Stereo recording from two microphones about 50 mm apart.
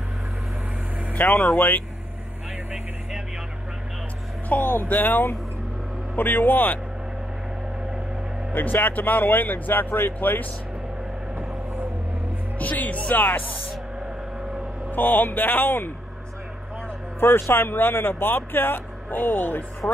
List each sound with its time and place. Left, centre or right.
1.1 s speech: left
4.5 s speech: left
8.5 s speech: left
12.5 s speech: left
14.9 s speech: left
17.2 s speech: left
19.8 s speech: centre